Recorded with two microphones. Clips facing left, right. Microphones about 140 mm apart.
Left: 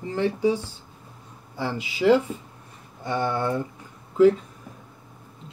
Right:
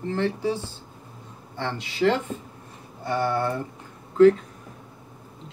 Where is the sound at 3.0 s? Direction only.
20° left (ahead or behind).